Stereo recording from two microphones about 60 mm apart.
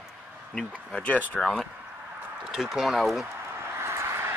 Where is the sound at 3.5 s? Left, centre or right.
Right.